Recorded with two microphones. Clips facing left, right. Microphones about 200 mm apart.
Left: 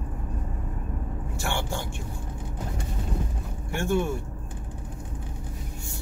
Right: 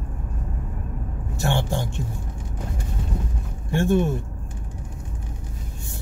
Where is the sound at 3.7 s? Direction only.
20° right (ahead or behind).